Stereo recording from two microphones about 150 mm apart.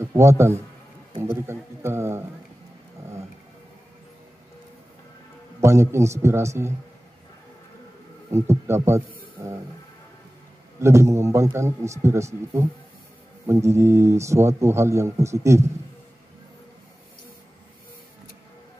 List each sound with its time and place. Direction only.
0.0 s a man's voice: 20° right (ahead or behind)
1.5 s a sound: 15° right (ahead or behind)
5.6 s speech: 20° right (ahead or behind)
8.3 s speech: 15° right (ahead or behind)
10.8 s speech: 20° right (ahead or behind)